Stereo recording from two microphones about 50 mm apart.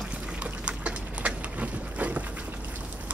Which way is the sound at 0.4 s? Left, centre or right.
Right.